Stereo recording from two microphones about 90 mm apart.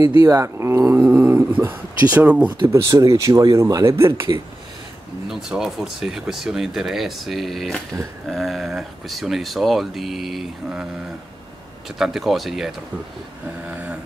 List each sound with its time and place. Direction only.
0.1 s speech: 35° right (ahead or behind); by 2.7 s 15° right (ahead or behind)
2.7 s speech: 40° right (ahead or behind)
3.8 s speech: 30° right (ahead or behind)
5.3 s speech: 5° right (ahead or behind)
12.0 s speech: 5° right (ahead or behind)